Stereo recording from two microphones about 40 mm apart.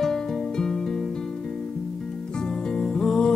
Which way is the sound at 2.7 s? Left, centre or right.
Centre.